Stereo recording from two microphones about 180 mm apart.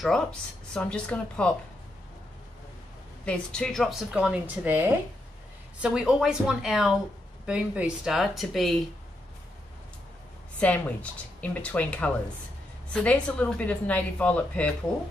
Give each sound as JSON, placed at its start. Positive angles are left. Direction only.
{"t": 0.0, "sound": "a woman's voice", "side_deg": 5}
{"t": 3.3, "sound": "a woman's voice", "side_deg": 5}
{"t": 10.6, "sound": "a woman's voice", "side_deg": 10}